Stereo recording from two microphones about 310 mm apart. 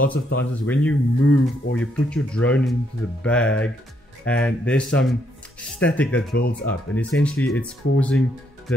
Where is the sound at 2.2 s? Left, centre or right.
Centre.